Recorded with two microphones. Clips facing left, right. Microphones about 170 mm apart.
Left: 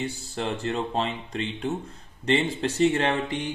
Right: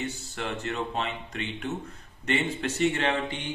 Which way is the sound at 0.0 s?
30° left (ahead or behind).